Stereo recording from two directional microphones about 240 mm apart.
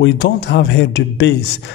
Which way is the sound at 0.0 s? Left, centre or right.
Left.